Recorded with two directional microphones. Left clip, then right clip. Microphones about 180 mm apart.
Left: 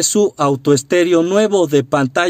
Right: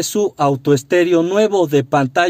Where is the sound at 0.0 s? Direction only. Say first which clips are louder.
Left 2 dB; 20° left (ahead or behind).